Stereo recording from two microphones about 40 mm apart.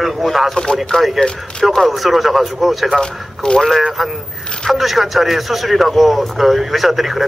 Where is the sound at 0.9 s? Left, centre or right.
Left.